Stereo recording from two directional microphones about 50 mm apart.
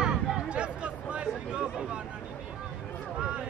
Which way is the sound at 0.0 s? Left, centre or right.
Centre.